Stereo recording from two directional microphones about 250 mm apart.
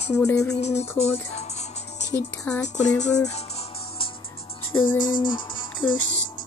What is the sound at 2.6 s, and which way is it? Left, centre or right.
Music, left.